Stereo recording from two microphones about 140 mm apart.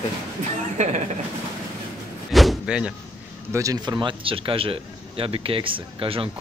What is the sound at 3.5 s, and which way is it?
Speech, 25° right (ahead or behind).